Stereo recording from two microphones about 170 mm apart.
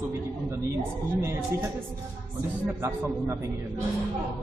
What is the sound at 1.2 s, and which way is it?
Speech, 15° right (ahead or behind).